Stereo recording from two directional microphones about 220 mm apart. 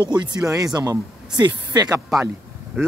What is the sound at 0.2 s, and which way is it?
A man's voice, 15° right (ahead or behind).